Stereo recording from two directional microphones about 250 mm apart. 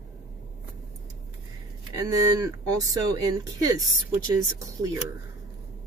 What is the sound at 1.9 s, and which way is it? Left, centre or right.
Speech, centre.